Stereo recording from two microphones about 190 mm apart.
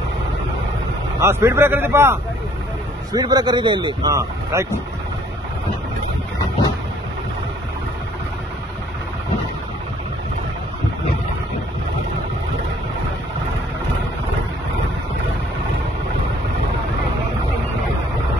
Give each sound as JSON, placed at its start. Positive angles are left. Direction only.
{"t": 1.2, "sound": "a man's voice", "side_deg": -15}